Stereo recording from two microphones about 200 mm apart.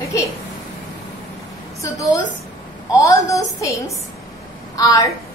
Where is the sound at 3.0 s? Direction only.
15° left (ahead or behind).